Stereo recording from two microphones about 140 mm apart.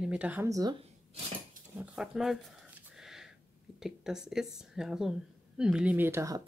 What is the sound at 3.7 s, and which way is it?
A woman's voice, 5° right (ahead or behind).